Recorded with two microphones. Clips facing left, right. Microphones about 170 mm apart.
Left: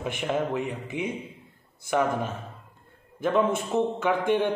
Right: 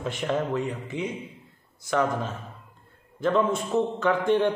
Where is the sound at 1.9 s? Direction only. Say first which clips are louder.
Even; 10° left (ahead or behind).